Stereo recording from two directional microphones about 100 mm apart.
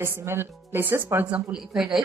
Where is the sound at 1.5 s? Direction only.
5° right (ahead or behind).